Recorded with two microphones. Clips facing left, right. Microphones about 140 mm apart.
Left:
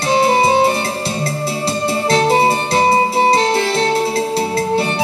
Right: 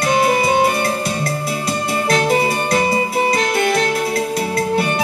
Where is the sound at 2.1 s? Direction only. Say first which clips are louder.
Left 3 dB; 30° left (ahead or behind).